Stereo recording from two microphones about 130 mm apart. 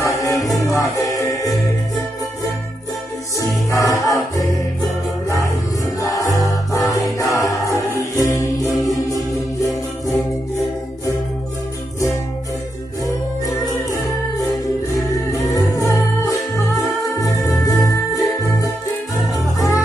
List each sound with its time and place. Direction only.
0.1 s music: 25° left (ahead or behind)
3.3 s music: 25° left (ahead or behind)
5.9 s music: 25° left (ahead or behind)
15.0 s music: 25° left (ahead or behind)